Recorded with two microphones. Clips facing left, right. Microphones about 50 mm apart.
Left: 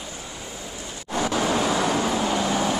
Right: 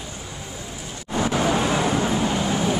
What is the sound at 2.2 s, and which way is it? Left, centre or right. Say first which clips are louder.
Vehicle: even; centre.